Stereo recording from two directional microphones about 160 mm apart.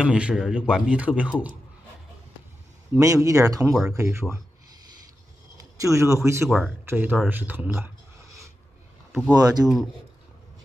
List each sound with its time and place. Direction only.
0.0 s speech: 5° right (ahead or behind)
2.9 s speech: 20° right (ahead or behind)
5.6 s speech: 20° right (ahead or behind)
9.3 s speech: 25° right (ahead or behind)